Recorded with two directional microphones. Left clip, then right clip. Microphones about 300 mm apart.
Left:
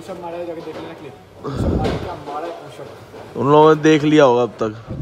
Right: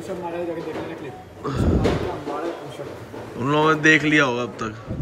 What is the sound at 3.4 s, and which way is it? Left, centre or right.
Speech, centre.